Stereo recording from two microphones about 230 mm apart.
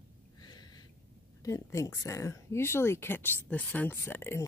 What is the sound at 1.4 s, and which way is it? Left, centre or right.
Speech, centre.